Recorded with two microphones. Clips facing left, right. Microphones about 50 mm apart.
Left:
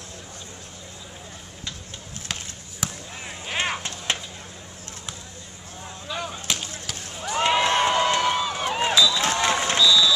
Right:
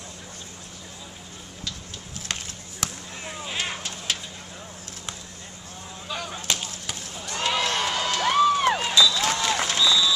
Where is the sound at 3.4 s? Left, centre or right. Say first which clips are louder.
Left 5 dB; left.